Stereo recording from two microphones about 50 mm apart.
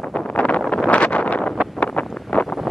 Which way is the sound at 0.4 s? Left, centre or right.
Left.